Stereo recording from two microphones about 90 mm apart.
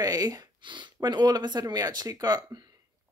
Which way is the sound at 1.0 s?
50° right (ahead or behind).